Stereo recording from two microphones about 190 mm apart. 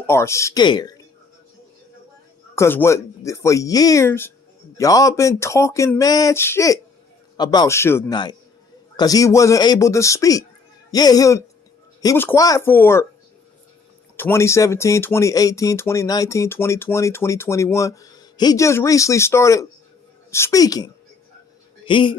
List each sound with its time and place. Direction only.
0.0 s speech: 15° left (ahead or behind)
2.5 s a man's voice: 15° left (ahead or behind)
14.1 s a man's voice: 10° left (ahead or behind)